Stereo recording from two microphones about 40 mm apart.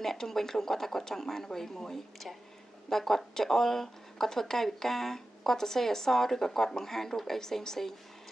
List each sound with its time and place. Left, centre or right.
0.0 s speech: centre